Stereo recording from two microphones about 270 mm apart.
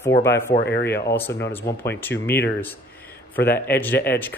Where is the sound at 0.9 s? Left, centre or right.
Centre.